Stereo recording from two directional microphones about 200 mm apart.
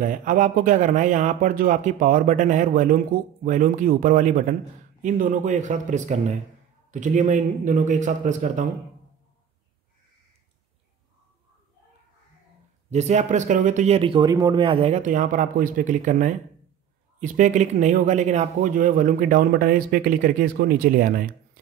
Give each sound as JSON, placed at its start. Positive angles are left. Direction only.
{"t": 0.0, "sound": "speech", "side_deg": -40}
{"t": 12.9, "sound": "a man's voice", "side_deg": -35}